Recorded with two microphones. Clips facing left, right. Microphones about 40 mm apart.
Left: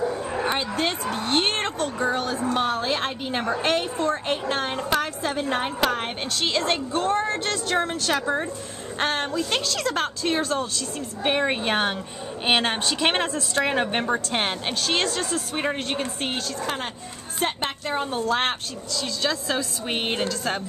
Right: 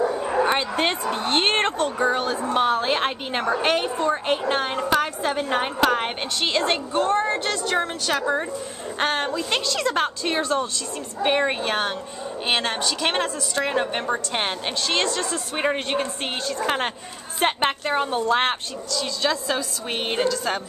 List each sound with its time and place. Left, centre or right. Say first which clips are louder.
0.7 s a woman's voice: right 2 dB; right; by 7.6 s centre
7.7 s a woman's voice: left 1 dB; centre
11.6 s a woman's voice: left 1 dB; centre
14.0 s a woman's voice: even; centre
15.5 s a woman's voice: right 5 dB; centre
16.6 s a woman's voice: right 5 dB; right
17.8 s a woman's voice: left 1 dB; centre
18.9 s a woman's voice: right 2 dB; centre